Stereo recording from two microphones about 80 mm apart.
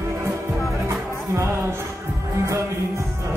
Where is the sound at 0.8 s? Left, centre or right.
Right.